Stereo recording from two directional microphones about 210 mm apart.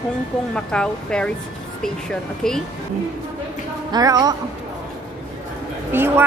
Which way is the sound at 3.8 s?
20° right (ahead or behind).